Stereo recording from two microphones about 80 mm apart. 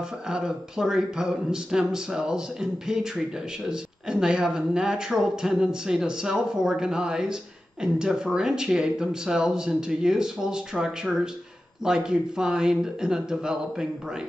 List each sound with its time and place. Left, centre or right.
0.3 s speech: centre